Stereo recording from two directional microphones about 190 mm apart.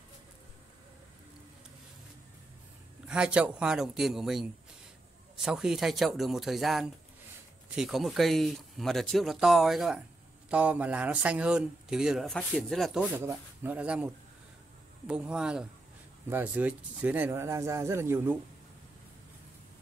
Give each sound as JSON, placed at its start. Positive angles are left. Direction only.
{"t": 3.1, "sound": "speech", "side_deg": -5}